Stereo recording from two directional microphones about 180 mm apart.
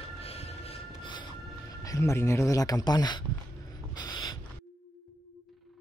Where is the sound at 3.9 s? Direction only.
25° left (ahead or behind).